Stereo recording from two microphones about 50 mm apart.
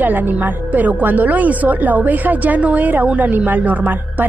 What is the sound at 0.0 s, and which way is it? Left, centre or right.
Speech, right.